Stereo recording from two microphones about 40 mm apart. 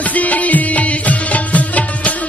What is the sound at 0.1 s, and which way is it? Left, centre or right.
Music, left.